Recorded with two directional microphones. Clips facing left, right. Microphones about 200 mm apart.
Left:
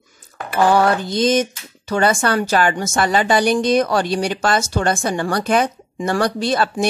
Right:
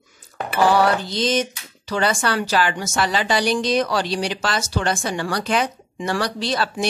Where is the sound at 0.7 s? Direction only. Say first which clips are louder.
Left 2 dB; 50° left (ahead or behind).